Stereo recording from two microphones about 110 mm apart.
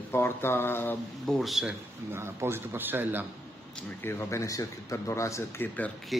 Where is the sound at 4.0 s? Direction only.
25° left (ahead or behind).